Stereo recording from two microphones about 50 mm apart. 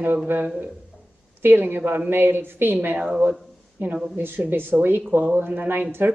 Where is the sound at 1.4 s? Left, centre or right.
Right.